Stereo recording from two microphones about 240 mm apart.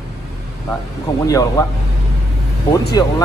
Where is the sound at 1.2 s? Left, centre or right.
Centre.